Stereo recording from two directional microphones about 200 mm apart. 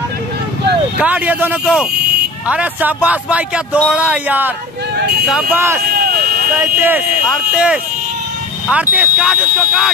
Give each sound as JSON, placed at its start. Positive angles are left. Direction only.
{"t": 0.9, "sound": "a man's voice", "side_deg": -5}
{"t": 5.9, "sound": "vehicle", "side_deg": -45}
{"t": 6.6, "sound": "a man's voice", "side_deg": -10}